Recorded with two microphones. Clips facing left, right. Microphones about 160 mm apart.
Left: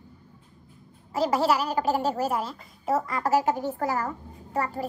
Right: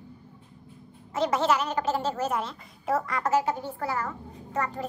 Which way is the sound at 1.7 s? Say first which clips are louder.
Left 2 dB; 40° left (ahead or behind).